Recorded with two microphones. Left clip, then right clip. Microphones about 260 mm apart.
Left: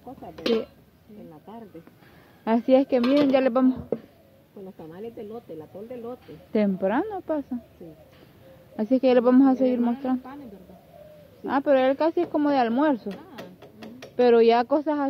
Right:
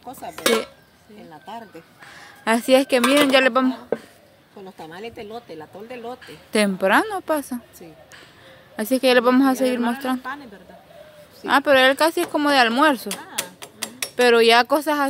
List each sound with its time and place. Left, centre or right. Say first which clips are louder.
2.4 s speech: right 3 dB; centre
8.7 s speech: right 3 dB; centre
11.4 s speech: right 6 dB; centre
13.2 s a sound: right 11 dB; centre